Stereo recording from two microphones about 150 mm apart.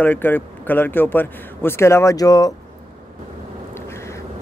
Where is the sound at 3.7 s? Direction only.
15° left (ahead or behind).